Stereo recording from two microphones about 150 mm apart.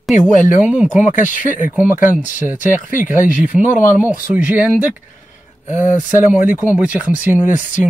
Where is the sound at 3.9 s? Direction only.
10° right (ahead or behind).